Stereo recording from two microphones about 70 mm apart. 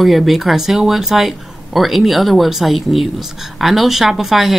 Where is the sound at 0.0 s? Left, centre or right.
Centre.